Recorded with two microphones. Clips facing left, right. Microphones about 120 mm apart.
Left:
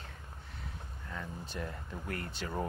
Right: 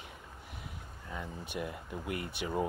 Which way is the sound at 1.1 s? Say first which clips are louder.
Right 2 dB; 15° right (ahead or behind).